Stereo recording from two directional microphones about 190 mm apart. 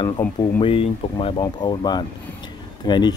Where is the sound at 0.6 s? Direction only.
25° left (ahead or behind).